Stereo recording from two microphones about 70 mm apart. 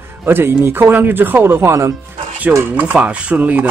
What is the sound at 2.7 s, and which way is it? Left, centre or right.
Speech, right.